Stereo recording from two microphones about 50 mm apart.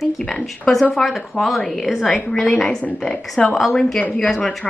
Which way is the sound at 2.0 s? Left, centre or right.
Centre.